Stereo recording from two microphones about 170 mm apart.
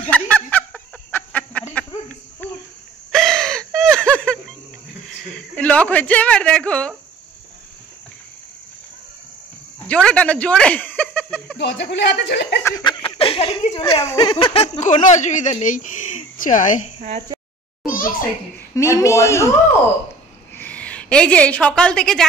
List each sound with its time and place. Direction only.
0.0 s snicker: 10° left (ahead or behind)
3.1 s a sound: centre (ahead or behind)
5.3 s speech: 5° left (ahead or behind)
9.8 s speech: 5° left (ahead or behind)
11.5 s speech: 90° left
12.6 s a sound: 25° left (ahead or behind)
14.0 s speech: 25° left (ahead or behind)
14.6 s speech: 45° left (ahead or behind)
17.8 s a sound: 55° left (ahead or behind)
18.8 s a man's voice: 15° left (ahead or behind)
20.5 s a woman's voice: 10° left (ahead or behind)